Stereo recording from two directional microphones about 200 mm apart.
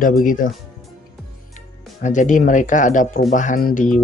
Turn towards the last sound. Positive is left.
turn(degrees=40)  # may be behind; listen again after turning